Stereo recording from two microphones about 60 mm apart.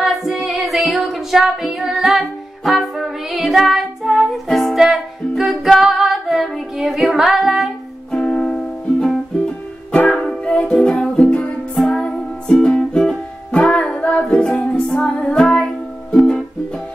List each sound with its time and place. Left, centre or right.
0.0 s female singing: centre
4.7 s music: centre
5.4 s female singing: centre
8.1 s music: centre
10.9 s music: centre
11.2 s music: centre